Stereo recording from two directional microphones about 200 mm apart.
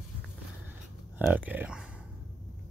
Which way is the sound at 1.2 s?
10° right (ahead or behind).